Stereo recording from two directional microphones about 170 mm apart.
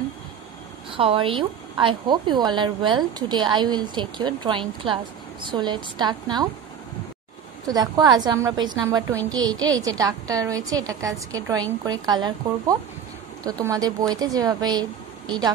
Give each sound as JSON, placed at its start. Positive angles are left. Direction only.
{"t": 0.9, "sound": "a woman's voice", "side_deg": -30}
{"t": 7.6, "sound": "a woman's voice", "side_deg": -25}